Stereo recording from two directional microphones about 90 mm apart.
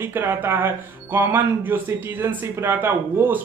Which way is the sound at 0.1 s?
25° right (ahead or behind).